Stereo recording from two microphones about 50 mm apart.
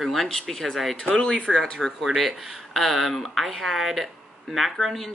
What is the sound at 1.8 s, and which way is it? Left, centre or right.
Speech, centre.